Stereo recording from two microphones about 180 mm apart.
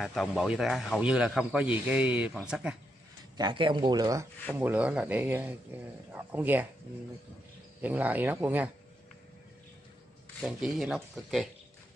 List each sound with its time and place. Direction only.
0.0 s speech: centre (ahead or behind)
3.3 s speech: 25° right (ahead or behind); by 6.7 s 10° right (ahead or behind)
7.8 s speech: 10° right (ahead or behind)
10.4 s speech: centre (ahead or behind)